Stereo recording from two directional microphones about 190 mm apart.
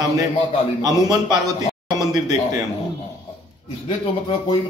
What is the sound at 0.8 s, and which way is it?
Speech, 20° right (ahead or behind).